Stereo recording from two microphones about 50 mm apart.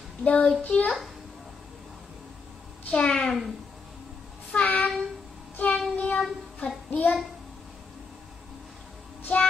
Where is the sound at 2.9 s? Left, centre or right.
Centre.